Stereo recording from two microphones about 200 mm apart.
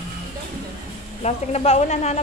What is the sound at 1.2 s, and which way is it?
Speech, 30° left (ahead or behind).